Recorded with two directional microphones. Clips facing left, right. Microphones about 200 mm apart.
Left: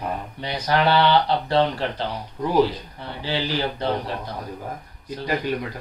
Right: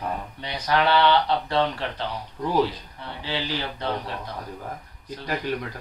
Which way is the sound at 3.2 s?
35° left (ahead or behind).